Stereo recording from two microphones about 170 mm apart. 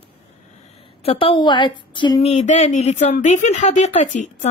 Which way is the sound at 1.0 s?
35° left (ahead or behind).